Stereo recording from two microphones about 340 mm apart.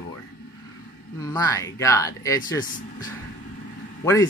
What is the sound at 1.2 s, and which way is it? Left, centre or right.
A man's voice, centre.